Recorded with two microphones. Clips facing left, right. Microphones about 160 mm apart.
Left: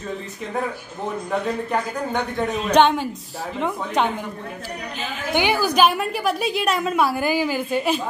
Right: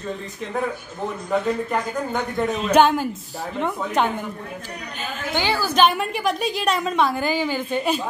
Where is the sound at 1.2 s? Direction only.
Centre (ahead or behind).